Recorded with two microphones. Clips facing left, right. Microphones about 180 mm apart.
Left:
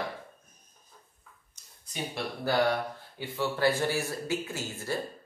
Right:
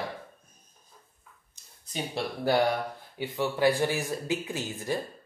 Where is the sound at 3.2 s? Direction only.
15° right (ahead or behind).